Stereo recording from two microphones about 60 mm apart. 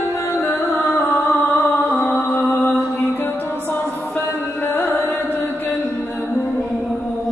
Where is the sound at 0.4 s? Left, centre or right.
Left.